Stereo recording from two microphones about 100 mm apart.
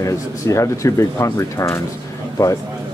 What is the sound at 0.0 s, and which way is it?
Speech, 30° left (ahead or behind).